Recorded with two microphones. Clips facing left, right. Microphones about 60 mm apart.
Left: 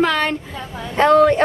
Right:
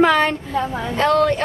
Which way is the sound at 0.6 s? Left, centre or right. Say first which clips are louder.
Right 7 dB; right.